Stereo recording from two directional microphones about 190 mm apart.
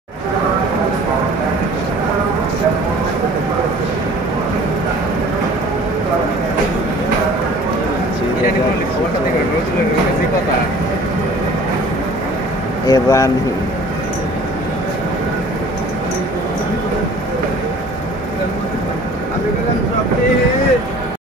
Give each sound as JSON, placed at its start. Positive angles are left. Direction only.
{"t": 12.8, "sound": "speech", "side_deg": 20}